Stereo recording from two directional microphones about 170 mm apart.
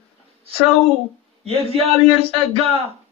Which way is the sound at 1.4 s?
35° right (ahead or behind).